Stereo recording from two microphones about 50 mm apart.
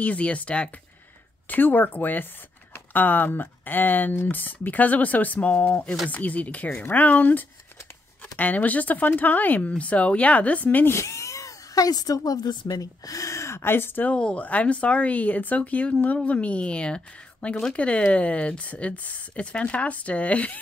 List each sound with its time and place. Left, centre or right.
0.0 s speech: left
1.5 s speech: left
10.9 s a sound: left
13.2 s a sound: left
13.6 s speech: left
14.1 s speech: left